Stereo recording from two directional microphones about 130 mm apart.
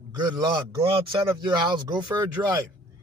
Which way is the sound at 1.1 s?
35° right (ahead or behind).